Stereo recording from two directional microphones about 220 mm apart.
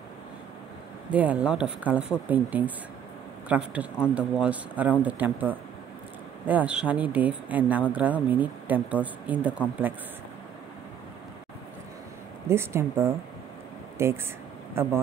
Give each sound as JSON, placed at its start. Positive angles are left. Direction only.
{"t": 1.1, "sound": "a man's voice", "side_deg": -5}
{"t": 12.4, "sound": "speech", "side_deg": -10}